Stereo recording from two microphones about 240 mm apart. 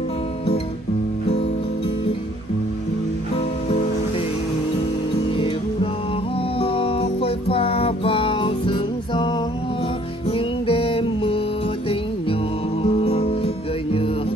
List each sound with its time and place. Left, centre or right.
5.3 s music: left
12.8 s music: left